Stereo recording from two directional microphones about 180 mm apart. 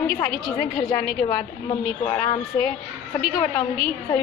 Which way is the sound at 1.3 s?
20° left (ahead or behind).